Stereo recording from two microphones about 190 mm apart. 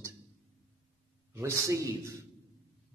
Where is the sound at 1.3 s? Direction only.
15° right (ahead or behind).